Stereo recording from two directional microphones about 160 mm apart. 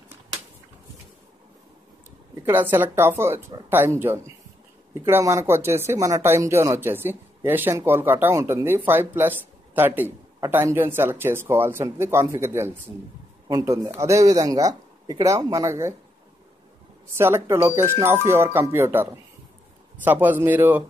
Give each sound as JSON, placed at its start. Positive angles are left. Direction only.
{"t": 2.4, "sound": "speech", "side_deg": -15}
{"t": 17.1, "sound": "speech", "side_deg": -15}